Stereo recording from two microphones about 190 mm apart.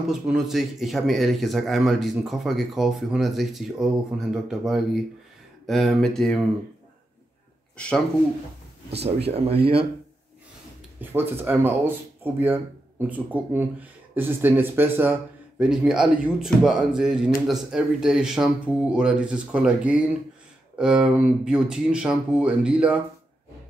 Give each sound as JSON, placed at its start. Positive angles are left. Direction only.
{"t": 0.0, "sound": "speech", "side_deg": 0}
{"t": 7.7, "sound": "speech", "side_deg": 5}
{"t": 9.0, "sound": "speech", "side_deg": -30}
{"t": 11.0, "sound": "speech", "side_deg": -10}